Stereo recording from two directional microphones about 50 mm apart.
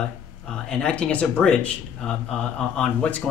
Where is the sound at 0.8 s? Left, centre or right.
Left.